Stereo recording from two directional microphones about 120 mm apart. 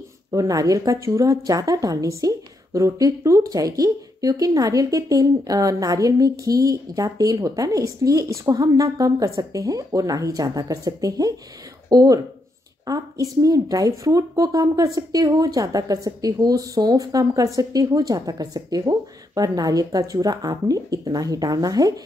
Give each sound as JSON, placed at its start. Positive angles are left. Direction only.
{"t": 0.3, "sound": "a woman's voice", "side_deg": -30}